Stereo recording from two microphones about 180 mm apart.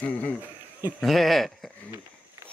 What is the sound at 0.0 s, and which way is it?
Speech, 10° left (ahead or behind).